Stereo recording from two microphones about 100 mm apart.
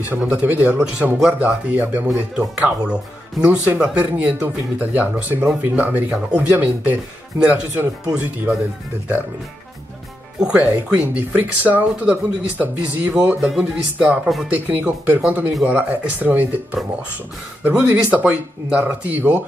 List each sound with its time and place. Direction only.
0.2 s speech: 15° right (ahead or behind)
10.4 s speech: 10° right (ahead or behind)
13.4 s speech: 5° right (ahead or behind)
14.5 s speech: 20° right (ahead or behind)
17.6 s speech: 15° right (ahead or behind)